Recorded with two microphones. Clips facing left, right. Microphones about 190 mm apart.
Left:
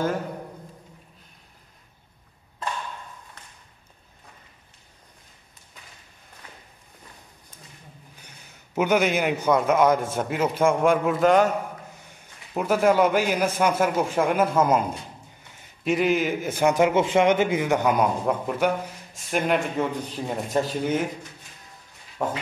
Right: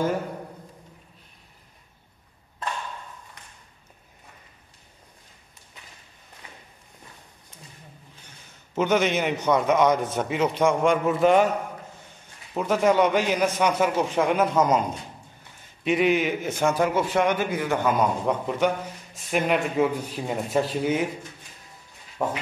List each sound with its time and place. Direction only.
8.7 s a man's voice: 10° left (ahead or behind)
12.5 s a man's voice: 5° left (ahead or behind)
16.6 s a man's voice: 20° left (ahead or behind); by 21.0 s centre (ahead or behind)
22.2 s a sound: 5° right (ahead or behind)